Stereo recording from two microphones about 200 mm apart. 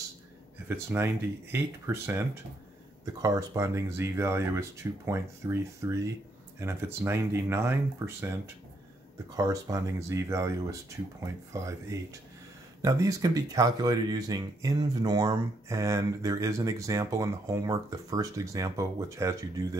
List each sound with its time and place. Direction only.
0.7 s speech: 10° right (ahead or behind)
9.4 s speech: 15° right (ahead or behind)